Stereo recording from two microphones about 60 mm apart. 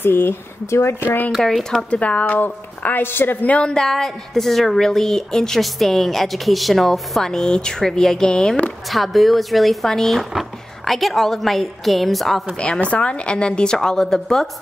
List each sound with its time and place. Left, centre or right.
0.0 s speech: left
1.0 s speech: left
1.6 s a woman's voice: centre
1.9 s a woman's voice: left
3.4 s a woman's voice: centre
8.9 s a woman's voice: centre
12.5 s a woman's voice: centre